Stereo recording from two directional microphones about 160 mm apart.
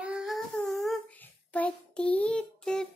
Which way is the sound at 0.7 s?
Centre (ahead or behind).